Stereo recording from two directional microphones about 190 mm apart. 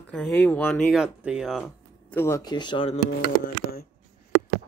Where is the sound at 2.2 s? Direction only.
15° left (ahead or behind).